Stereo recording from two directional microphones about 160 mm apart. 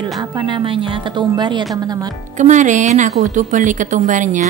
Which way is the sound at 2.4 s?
50° right (ahead or behind).